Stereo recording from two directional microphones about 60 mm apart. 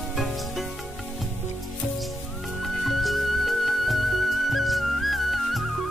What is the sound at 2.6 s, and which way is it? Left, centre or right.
Music, centre.